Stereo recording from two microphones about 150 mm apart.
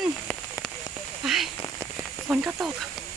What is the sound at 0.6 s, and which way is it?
Rain on surface, 5° left (ahead or behind).